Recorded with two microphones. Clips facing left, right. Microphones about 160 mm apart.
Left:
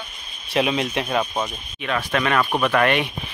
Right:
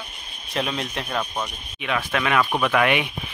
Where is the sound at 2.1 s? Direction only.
5° right (ahead or behind).